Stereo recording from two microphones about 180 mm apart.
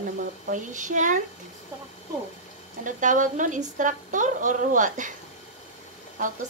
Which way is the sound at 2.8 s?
45° right (ahead or behind).